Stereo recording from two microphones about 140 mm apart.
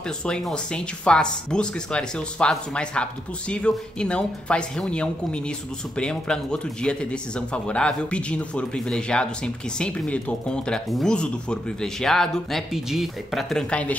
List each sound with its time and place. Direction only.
0.2 s speech: 5° left (ahead or behind)